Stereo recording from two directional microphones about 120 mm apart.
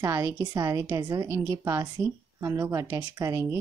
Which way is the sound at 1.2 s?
20° right (ahead or behind).